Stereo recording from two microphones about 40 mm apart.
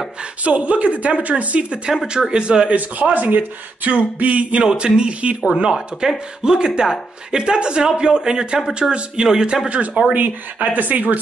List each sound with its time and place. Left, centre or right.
0.4 s speech: right
2.0 s speech: centre
2.7 s speech: right
4.6 s speech: right
5.4 s speech: centre
10.1 s speech: right